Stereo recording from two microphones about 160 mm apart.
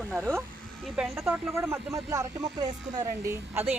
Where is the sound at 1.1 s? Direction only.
15° right (ahead or behind).